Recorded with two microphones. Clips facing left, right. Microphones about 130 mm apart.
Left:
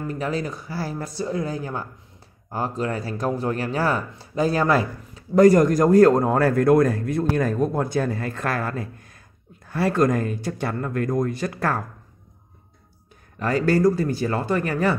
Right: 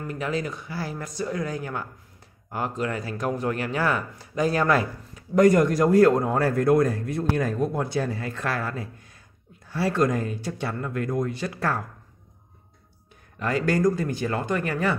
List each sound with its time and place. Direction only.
0.0 s speech: 35° left (ahead or behind)
13.4 s speech: 35° left (ahead or behind)